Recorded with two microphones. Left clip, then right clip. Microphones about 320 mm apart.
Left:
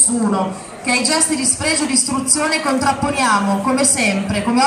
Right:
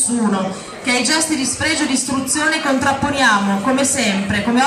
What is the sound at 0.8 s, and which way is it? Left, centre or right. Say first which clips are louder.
Speech: even; centre.